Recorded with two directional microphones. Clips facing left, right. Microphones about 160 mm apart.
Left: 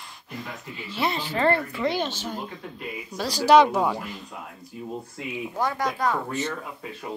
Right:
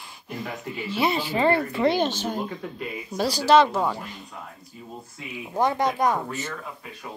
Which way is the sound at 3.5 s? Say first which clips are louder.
Left 2 dB; 10° left (ahead or behind).